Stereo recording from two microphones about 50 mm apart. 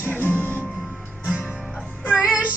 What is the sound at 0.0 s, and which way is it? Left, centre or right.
Music, left.